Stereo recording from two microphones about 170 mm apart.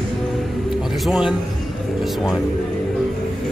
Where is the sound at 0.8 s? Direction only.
Centre (ahead or behind).